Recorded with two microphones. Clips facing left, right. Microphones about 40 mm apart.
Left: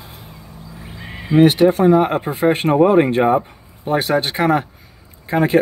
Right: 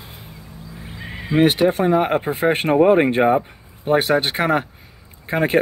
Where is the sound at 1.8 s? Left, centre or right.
Centre.